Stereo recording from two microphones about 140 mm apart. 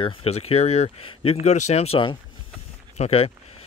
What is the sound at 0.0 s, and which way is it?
Speech, 45° left (ahead or behind).